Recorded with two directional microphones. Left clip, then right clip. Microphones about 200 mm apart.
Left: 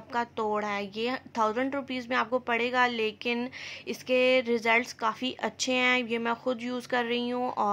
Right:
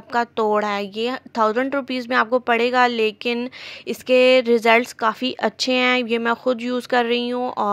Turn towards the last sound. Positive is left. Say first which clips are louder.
# right 6 dB
turn(degrees=-30)  # may be behind; listen again after turning